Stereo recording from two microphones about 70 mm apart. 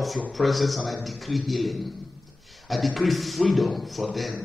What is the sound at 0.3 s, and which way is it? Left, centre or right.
A man's voice, centre.